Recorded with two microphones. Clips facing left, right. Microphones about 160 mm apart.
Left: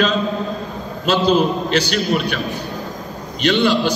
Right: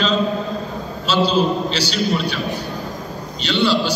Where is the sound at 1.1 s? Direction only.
55° left (ahead or behind).